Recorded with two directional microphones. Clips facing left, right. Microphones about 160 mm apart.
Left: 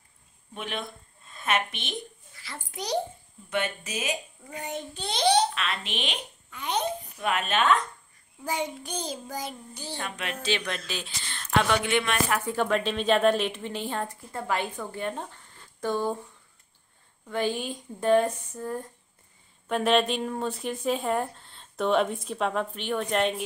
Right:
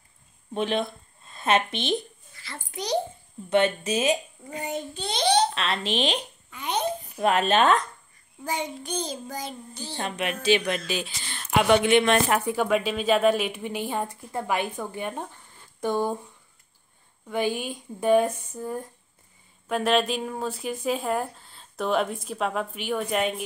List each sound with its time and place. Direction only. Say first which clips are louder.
0.6 s a woman's voice: right 9 dB; 30° right (ahead or behind)
2.4 s speech: right 2 dB; 5° left (ahead or behind)
3.4 s speech: right 8 dB; 30° right (ahead or behind)
4.6 s speech: right 3 dB; centre (ahead or behind)
5.5 s speech: right 5 dB; 30° right (ahead or behind)
6.5 s a child's voice: right 1 dB; 5° right (ahead or behind)
7.2 s speech: right 6 dB; 35° right (ahead or behind)
8.5 s speech: right 1 dB; 5° left (ahead or behind)
9.9 s a woman's voice: right 6 dB; 20° right (ahead or behind)
11.7 s speech: right 7 dB; 20° right (ahead or behind)
12.5 s a woman's voice: right 2 dB; 10° right (ahead or behind)
17.3 s a woman's voice: right 2 dB; 10° right (ahead or behind)